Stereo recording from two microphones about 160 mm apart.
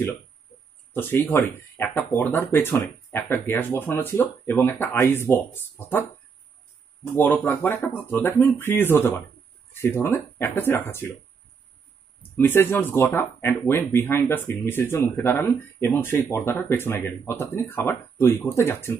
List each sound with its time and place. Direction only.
0.5 s a sound: 40° left (ahead or behind)
0.9 s speech: 15° left (ahead or behind)
7.2 s speech: 10° left (ahead or behind)
12.2 s speech: 15° left (ahead or behind)